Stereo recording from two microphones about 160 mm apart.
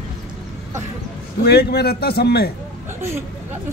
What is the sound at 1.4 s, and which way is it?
A man's voice, 85° left.